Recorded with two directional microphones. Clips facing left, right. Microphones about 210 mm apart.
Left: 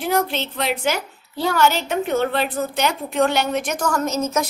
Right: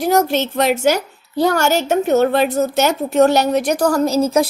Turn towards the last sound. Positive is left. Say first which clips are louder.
# right 7 dB
turn(degrees=-35)  # may be behind; listen again after turning